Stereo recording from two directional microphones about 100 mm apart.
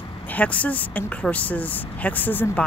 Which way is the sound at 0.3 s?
15° left (ahead or behind).